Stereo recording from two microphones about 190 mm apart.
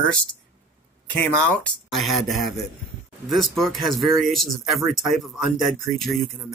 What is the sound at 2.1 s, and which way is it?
Speech, centre (ahead or behind).